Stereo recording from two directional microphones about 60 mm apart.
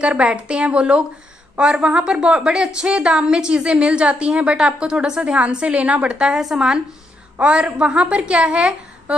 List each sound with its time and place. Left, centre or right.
0.0 s a woman's voice: centre
7.3 s a woman's voice: centre